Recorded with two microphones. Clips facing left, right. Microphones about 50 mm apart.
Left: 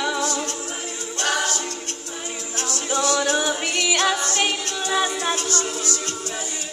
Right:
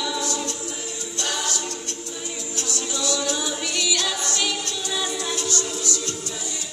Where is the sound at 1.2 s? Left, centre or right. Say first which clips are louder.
Left 5 dB; left.